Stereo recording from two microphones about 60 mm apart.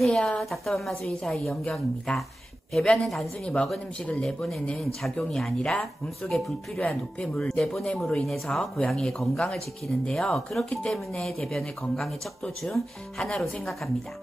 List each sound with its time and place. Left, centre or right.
0.0 s a woman's voice: centre
6.7 s a woman's voice: centre